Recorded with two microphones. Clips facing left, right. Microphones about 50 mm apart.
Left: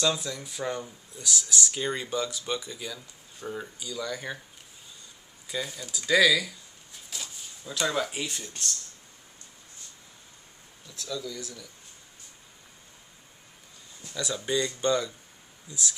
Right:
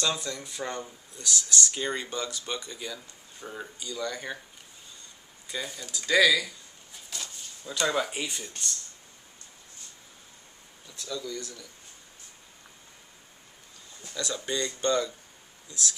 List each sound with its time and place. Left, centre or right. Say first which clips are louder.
0.0 s speech: left 2 dB; centre
5.5 s speech: left 2 dB; centre
10.9 s speech: even; centre
14.1 s speech: left 3 dB; centre